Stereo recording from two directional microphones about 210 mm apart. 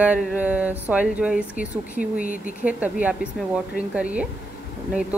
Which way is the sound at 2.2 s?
40° left (ahead or behind).